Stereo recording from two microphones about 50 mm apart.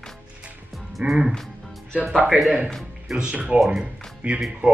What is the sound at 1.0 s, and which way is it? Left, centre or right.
Speech, right.